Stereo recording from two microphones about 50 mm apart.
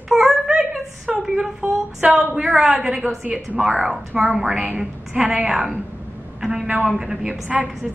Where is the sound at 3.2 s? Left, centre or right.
Right.